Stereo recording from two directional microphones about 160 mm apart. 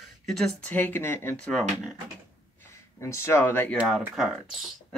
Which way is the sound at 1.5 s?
Centre (ahead or behind).